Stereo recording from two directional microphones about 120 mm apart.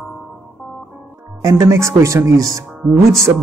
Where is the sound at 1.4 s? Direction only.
25° right (ahead or behind).